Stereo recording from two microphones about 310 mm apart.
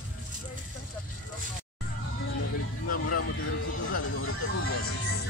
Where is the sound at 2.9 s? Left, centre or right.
Left.